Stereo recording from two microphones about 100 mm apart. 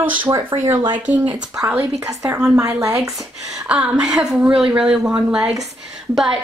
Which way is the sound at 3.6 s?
10° right (ahead or behind).